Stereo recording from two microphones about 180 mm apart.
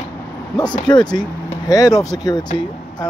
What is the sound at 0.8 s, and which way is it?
Speech, 25° left (ahead or behind).